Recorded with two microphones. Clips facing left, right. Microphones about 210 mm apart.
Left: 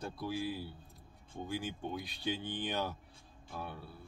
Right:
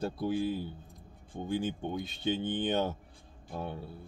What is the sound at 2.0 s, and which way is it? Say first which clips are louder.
Speech: right 6 dB; 25° right (ahead or behind).